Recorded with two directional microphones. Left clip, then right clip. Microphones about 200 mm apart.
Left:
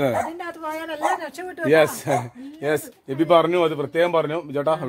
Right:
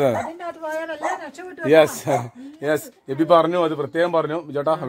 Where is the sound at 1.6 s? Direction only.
25° right (ahead or behind).